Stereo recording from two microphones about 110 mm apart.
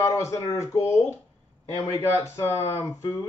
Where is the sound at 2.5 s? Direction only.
20° left (ahead or behind).